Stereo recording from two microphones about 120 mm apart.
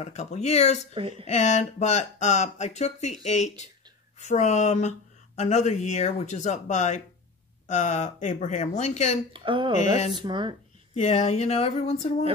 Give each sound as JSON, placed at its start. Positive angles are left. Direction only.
{"t": 0.0, "sound": "speech", "side_deg": 70}
{"t": 7.6, "sound": "speech", "side_deg": 90}
{"t": 9.3, "sound": "speech", "side_deg": -45}
{"t": 11.0, "sound": "speech", "side_deg": 75}